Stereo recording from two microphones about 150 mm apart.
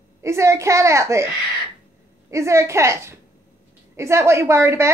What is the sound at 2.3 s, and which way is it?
A woman's voice, 20° right (ahead or behind).